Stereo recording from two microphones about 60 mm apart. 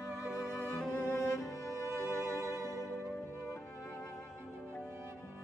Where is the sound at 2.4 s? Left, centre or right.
Right.